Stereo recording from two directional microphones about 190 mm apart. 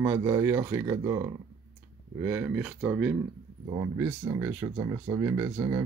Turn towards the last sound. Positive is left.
turn(degrees=-15)  # may be behind; listen again after turning